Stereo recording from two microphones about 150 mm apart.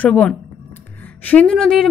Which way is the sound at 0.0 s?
10° left (ahead or behind).